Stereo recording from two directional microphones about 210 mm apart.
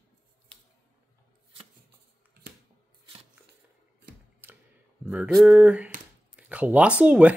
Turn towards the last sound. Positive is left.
turn(degrees=-5)  # may be behind; listen again after turning